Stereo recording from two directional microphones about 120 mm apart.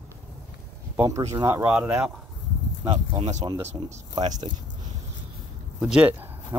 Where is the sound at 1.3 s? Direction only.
35° right (ahead or behind).